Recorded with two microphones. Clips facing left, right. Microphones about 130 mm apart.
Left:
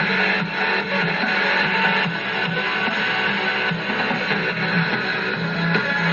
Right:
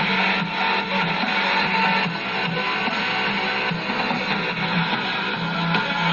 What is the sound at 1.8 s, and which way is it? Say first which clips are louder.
Music: even; 35° right (ahead or behind).